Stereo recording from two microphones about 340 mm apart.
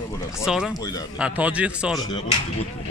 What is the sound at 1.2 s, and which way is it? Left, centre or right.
Speech, centre.